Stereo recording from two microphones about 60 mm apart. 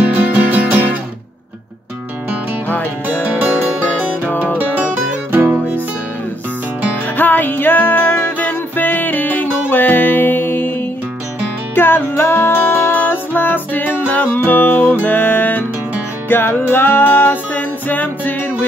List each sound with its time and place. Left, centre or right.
0.3 s music: right
2.7 s music: left
4.6 s music: right
7.2 s music: left